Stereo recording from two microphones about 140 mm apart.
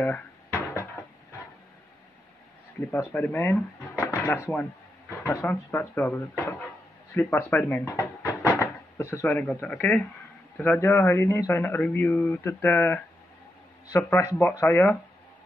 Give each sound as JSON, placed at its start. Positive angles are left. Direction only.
{"t": 0.0, "sound": "a sound", "side_deg": 15}
{"t": 2.8, "sound": "speech", "side_deg": 15}
{"t": 4.1, "sound": "dishes", "side_deg": 15}
{"t": 5.2, "sound": "speech", "side_deg": 15}